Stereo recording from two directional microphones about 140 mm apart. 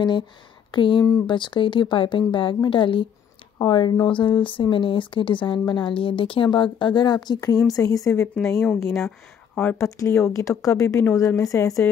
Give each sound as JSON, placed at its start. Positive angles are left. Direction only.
{"t": 0.7, "sound": "speech", "side_deg": 35}